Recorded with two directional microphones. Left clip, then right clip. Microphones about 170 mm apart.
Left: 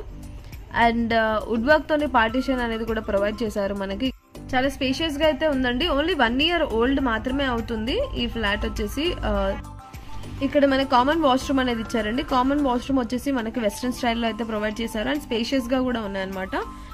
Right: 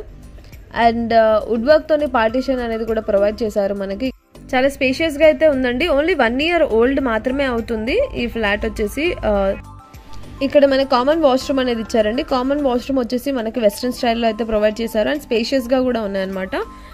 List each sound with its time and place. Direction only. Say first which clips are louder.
0.7 s a woman's voice: right 6 dB; 15° right (ahead or behind)
4.5 s a woman's voice: right 7 dB; 30° right (ahead or behind)